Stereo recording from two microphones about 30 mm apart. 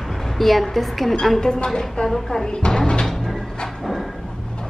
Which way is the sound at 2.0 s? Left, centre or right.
Left.